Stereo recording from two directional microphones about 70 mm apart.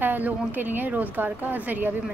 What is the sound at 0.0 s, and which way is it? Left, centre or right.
A woman's voice, right.